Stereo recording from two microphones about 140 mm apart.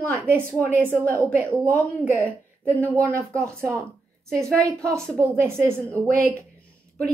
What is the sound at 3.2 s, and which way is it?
Speech, 20° right (ahead or behind).